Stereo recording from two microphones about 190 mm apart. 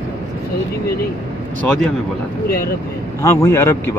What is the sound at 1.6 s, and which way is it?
Speech, 5° left (ahead or behind).